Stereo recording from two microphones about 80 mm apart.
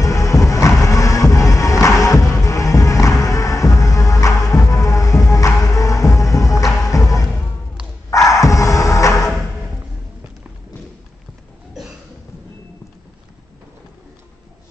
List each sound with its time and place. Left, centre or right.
0.0 s music: left